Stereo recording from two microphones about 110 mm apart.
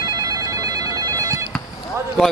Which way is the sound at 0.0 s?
40° right (ahead or behind).